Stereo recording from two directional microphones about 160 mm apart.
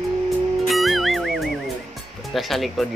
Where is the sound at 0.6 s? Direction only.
Centre (ahead or behind).